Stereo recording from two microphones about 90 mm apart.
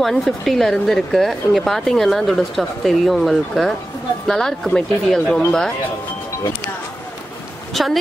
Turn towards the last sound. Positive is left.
turn(degrees=0)  # may be behind; listen again after turning